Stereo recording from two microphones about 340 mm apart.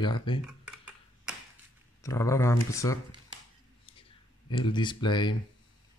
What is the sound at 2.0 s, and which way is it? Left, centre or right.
Speech, centre.